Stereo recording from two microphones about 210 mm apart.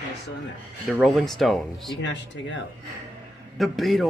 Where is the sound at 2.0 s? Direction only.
60° left (ahead or behind).